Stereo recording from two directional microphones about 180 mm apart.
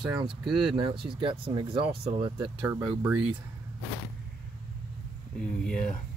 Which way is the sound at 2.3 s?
20° right (ahead or behind).